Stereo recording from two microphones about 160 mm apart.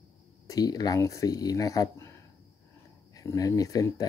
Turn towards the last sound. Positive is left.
turn(degrees=20)  # may be behind; listen again after turning